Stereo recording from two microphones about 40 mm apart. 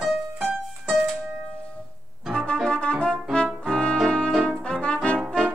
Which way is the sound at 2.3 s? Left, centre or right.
Left.